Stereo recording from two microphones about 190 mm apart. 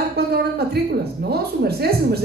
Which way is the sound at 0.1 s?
55° right (ahead or behind).